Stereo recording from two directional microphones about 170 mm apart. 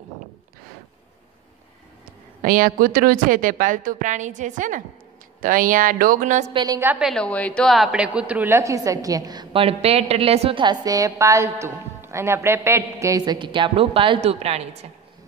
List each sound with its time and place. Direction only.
2.4 s a woman's voice: 55° right (ahead or behind)
6.5 s a woman's voice: 25° right (ahead or behind)
6.8 s a woman's voice: 5° right (ahead or behind); by 14.9 s 40° right (ahead or behind)